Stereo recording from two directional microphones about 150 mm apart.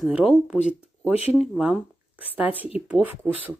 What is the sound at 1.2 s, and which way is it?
Speech, 45° left (ahead or behind).